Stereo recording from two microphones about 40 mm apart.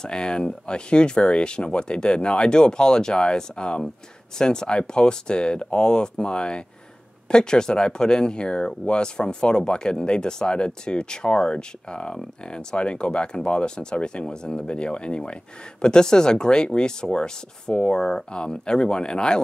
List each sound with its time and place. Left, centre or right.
0.0 s speech: left